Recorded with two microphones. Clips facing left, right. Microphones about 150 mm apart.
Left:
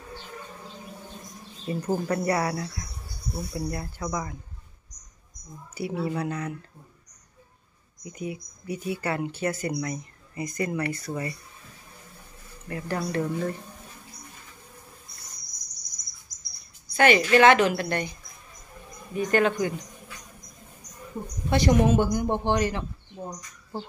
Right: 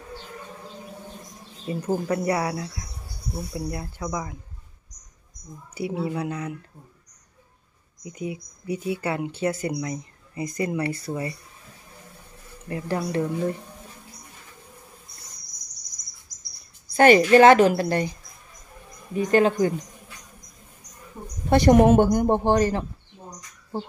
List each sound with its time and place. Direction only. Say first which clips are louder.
1.7 s speech: right 2 dB; 15° right (ahead or behind)
5.8 s speech: right 1 dB; 20° right (ahead or behind)
8.0 s speech: right 2 dB; 20° right (ahead or behind)
12.6 s speech: right 3 dB; 25° right (ahead or behind)
16.9 s a woman's voice: right 5 dB; 40° right (ahead or behind)
19.1 s speech: right 4 dB; 30° right (ahead or behind)
21.5 s speech: right 6 dB; 50° right (ahead or behind)